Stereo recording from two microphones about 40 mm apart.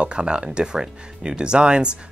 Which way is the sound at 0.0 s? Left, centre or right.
Right.